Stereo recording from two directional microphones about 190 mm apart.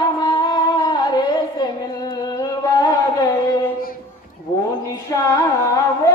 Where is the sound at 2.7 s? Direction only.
20° left (ahead or behind).